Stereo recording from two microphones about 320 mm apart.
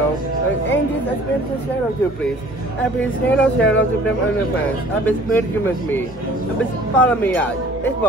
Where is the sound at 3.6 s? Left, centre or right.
Centre.